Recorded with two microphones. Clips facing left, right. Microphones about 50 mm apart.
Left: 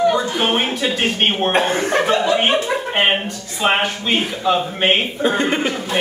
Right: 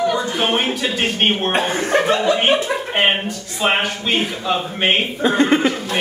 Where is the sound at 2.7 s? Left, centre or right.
Centre.